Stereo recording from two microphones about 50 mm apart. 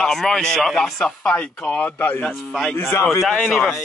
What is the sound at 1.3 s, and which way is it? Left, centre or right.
Speech, left.